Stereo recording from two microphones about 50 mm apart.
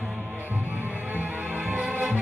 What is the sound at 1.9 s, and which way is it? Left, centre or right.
Music, right.